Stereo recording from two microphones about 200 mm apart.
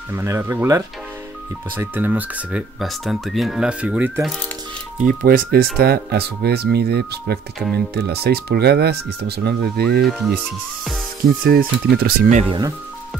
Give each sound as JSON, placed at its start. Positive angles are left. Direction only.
{"t": 0.1, "sound": "speech", "side_deg": -10}
{"t": 5.0, "sound": "speech", "side_deg": -45}
{"t": 10.0, "sound": "speech", "side_deg": 0}
{"t": 11.4, "sound": "speech", "side_deg": -50}
{"t": 12.4, "sound": "speech", "side_deg": -20}